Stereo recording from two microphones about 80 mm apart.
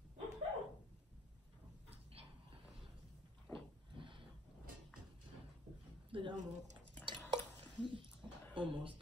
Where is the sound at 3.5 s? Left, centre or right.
Right.